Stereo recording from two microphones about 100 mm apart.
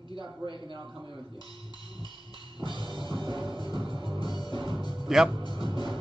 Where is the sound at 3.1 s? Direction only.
50° right (ahead or behind).